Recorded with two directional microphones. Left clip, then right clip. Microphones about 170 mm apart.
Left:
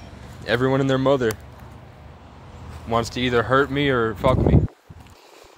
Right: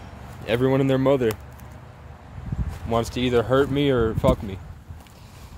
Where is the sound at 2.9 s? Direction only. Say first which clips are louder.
Left 1 dB; 10° right (ahead or behind).